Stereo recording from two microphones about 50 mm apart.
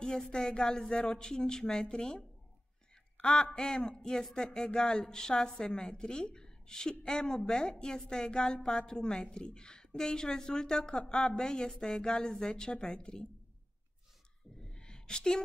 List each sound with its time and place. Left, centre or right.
0.0 s a woman's voice: centre
3.5 s a woman's voice: centre
14.6 s a sound: centre